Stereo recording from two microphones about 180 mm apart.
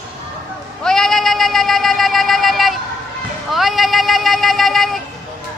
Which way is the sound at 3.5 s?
Centre (ahead or behind).